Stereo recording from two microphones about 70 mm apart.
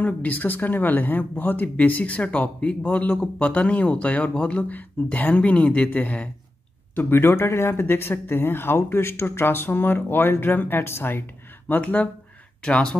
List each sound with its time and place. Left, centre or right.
0.0 s speech: left
7.0 s speech: left
11.7 s speech: left
12.6 s speech: centre